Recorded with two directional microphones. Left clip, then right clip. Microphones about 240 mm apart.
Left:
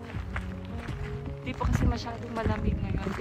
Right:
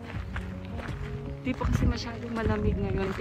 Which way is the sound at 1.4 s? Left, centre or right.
Centre.